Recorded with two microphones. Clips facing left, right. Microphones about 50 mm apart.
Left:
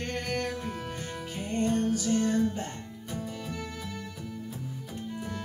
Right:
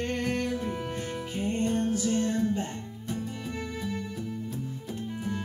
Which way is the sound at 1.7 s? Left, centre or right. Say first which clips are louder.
Even; centre.